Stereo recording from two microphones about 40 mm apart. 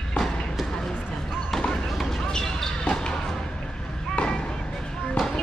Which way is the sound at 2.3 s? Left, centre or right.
Centre.